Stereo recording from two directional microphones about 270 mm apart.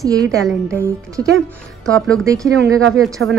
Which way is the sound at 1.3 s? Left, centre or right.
Centre.